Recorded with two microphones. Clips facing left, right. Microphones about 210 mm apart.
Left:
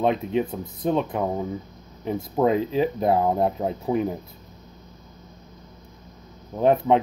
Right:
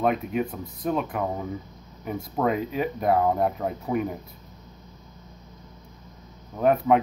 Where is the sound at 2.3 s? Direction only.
30° left (ahead or behind).